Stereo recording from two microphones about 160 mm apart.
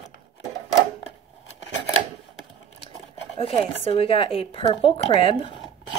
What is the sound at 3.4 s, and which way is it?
Speech, 35° left (ahead or behind).